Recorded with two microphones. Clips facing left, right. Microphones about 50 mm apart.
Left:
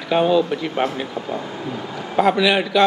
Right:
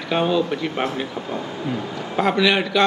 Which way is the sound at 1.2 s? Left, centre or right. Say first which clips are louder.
Left 2 dB; right.